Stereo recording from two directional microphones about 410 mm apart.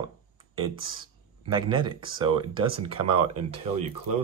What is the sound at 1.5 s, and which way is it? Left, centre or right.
Speech, centre.